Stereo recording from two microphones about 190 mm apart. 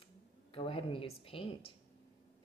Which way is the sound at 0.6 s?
30° left (ahead or behind).